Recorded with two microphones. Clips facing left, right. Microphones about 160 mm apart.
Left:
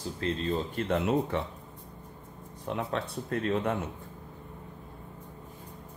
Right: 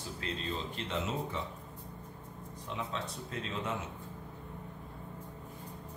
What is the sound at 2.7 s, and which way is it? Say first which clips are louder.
Speech: left 7 dB; 55° left (ahead or behind).